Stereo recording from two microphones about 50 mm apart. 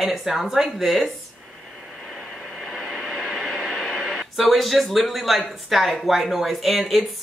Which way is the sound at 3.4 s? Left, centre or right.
Centre.